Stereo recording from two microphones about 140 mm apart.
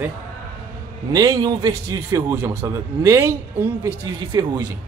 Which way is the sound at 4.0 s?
30° right (ahead or behind).